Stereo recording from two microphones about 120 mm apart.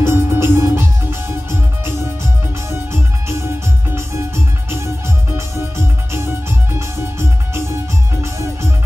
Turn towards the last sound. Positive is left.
turn(degrees=-20)  # may be behind; listen again after turning